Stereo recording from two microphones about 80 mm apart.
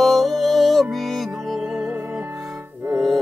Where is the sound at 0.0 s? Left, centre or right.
Centre.